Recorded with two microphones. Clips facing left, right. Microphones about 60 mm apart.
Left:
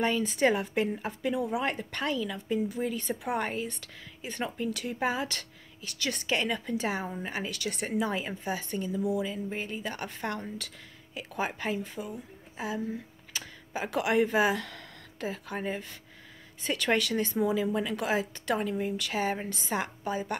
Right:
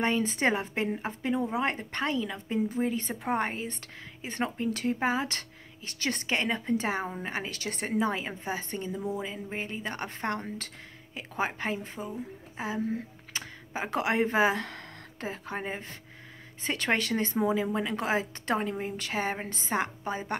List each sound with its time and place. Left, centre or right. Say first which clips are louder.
0.0 s speech: left 1 dB; right